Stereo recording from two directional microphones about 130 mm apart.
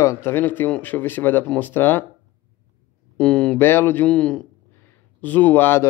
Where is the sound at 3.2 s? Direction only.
5° left (ahead or behind).